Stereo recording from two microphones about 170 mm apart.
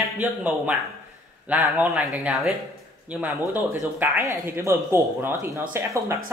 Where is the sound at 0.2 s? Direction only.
10° right (ahead or behind).